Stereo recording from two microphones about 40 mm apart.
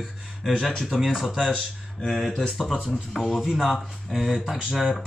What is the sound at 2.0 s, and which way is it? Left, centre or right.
Speech, centre.